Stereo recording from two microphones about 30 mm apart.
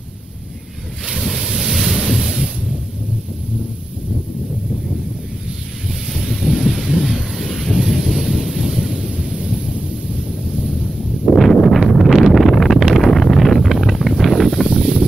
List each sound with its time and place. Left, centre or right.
1.0 s ocean: centre
1.5 s waves: centre
6.1 s a sound: centre
7.3 s a sound: centre
7.7 s thunder: centre
8.3 s a sound: centre
8.6 s thunder: centre
8.9 s thunder: right
11.3 s a sound: centre
12.1 s wind noise: centre
14.2 s wind: centre
14.7 s wind noise: centre